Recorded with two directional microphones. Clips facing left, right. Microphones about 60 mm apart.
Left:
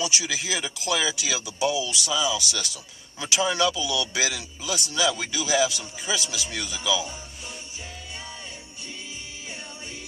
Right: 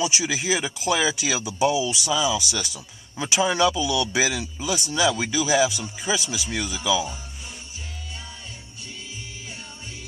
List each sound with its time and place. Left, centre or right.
0.0 s speech: centre